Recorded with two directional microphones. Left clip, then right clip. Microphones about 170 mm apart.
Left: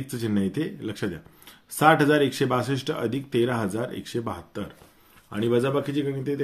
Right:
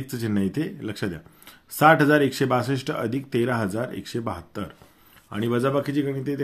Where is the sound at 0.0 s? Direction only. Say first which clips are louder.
Right 1 dB; 30° right (ahead or behind).